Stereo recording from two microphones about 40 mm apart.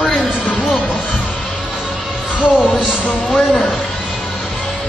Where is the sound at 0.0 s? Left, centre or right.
Centre.